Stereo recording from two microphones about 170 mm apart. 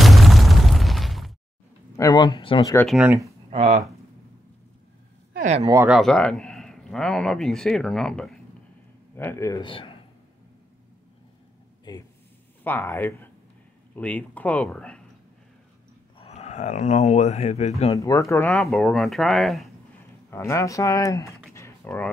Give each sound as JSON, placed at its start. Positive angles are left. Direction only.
{"t": 0.0, "sound": "explosion", "side_deg": 0}
{"t": 2.0, "sound": "speech", "side_deg": 25}
{"t": 2.9, "sound": "speech", "side_deg": -5}
{"t": 3.4, "sound": "speech", "side_deg": -40}
{"t": 5.3, "sound": "speech", "side_deg": -45}
{"t": 5.9, "sound": "speech", "side_deg": 0}
{"t": 11.9, "sound": "speech", "side_deg": 25}
{"t": 12.6, "sound": "speech", "side_deg": 10}
{"t": 16.2, "sound": "speech", "side_deg": 40}
{"t": 17.9, "sound": "speech", "side_deg": 20}
{"t": 18.5, "sound": "speech", "side_deg": 0}
{"t": 20.2, "sound": "speech", "side_deg": 15}
{"t": 21.5, "sound": "typing", "side_deg": 15}